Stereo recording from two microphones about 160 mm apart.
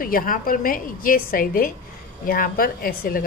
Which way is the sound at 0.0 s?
60° left (ahead or behind).